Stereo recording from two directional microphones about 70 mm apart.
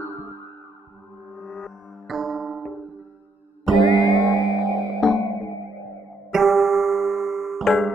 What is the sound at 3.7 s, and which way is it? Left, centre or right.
Music, left.